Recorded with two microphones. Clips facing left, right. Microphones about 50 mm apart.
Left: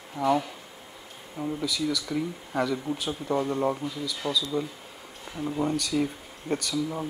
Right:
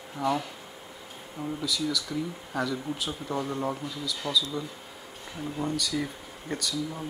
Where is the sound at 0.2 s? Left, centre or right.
Centre.